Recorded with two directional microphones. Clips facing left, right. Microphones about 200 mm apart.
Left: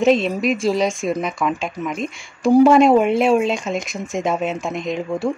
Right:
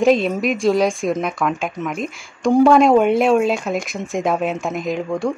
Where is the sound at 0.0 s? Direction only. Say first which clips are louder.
Right 1 dB; centre (ahead or behind).